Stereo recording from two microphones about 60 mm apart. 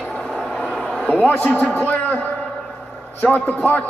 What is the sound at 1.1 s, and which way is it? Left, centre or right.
A man's voice, left.